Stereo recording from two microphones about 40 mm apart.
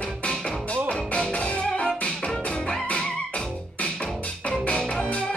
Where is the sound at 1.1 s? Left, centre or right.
Left.